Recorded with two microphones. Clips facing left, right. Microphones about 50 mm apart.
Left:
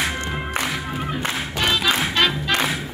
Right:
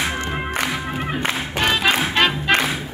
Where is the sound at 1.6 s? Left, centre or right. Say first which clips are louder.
Right 2 dB; right.